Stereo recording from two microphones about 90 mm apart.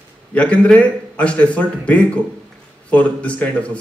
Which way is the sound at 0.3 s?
15° left (ahead or behind).